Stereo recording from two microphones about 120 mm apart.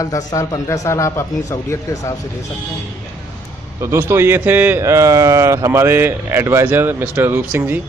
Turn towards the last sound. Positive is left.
turn(degrees=-15)  # may be behind; listen again after turning